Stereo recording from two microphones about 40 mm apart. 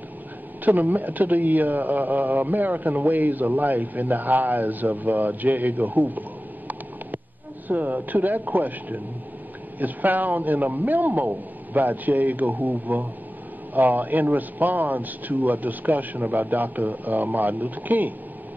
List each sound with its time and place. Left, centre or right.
0.7 s a man's voice: right
7.6 s a man's voice: right